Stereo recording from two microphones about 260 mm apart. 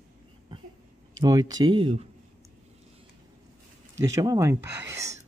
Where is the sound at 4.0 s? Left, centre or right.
Centre.